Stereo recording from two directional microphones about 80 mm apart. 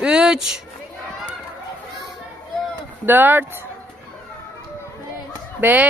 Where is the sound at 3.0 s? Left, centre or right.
Right.